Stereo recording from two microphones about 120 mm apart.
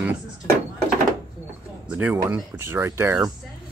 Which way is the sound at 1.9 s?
10° right (ahead or behind).